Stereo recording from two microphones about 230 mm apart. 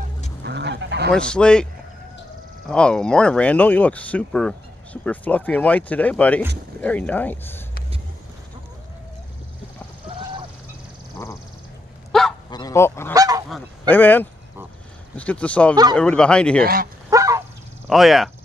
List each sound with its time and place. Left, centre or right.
0.4 s goose: right
1.1 s speech: centre
2.7 s speech: centre
10.0 s duck: right
12.1 s goose: centre
12.4 s goose: centre
13.1 s goose: centre
13.5 s speech: centre
15.7 s a man's voice: centre
16.0 s speech: centre
16.6 s speech: right
17.1 s a sound: centre
17.8 s speech: centre